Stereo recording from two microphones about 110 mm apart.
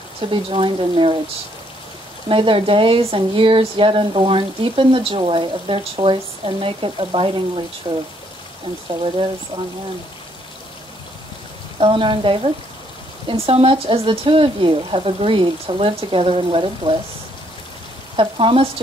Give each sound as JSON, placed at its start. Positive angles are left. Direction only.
{"t": 0.3, "sound": "speech", "side_deg": -50}
{"t": 2.2, "sound": "speech", "side_deg": -55}
{"t": 9.5, "sound": "speech", "side_deg": -35}
{"t": 11.8, "sound": "speech", "side_deg": -50}
{"t": 18.1, "sound": "speech", "side_deg": -55}